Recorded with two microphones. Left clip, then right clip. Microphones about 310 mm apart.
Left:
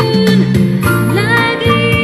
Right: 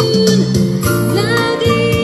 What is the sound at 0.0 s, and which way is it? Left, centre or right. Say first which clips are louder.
Music: even; centre.